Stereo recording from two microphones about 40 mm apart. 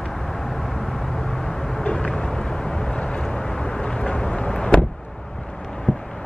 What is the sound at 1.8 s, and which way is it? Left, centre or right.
Vehicle, left.